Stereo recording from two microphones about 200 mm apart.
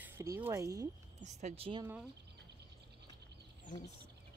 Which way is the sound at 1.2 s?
35° right (ahead or behind).